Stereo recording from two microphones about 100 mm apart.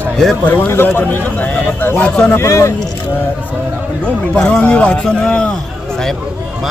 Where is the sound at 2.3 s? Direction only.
30° left (ahead or behind).